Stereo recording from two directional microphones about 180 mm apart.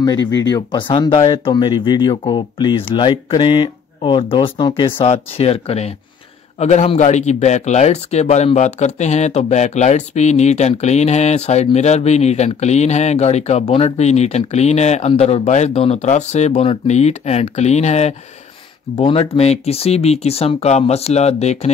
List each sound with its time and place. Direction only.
0.0 s a man's voice: 20° left (ahead or behind); by 21.6 s 35° left (ahead or behind)